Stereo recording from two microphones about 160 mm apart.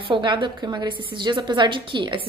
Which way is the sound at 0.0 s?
30° right (ahead or behind).